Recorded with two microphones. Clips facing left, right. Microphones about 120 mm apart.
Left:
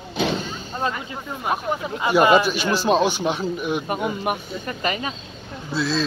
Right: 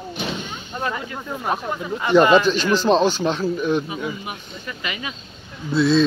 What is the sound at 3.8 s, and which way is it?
Speech, 55° left (ahead or behind).